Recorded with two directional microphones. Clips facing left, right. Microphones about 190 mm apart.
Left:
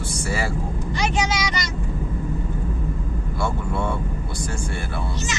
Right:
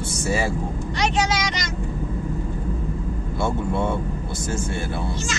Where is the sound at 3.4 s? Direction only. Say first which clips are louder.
Right 3 dB; 20° right (ahead or behind).